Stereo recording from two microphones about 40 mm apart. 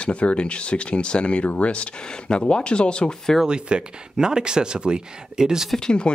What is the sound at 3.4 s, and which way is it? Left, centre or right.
Speech, right.